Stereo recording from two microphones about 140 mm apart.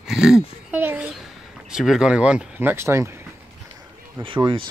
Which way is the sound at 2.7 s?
20° right (ahead or behind).